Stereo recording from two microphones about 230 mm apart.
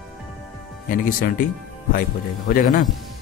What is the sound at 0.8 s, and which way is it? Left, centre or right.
A man's voice, left.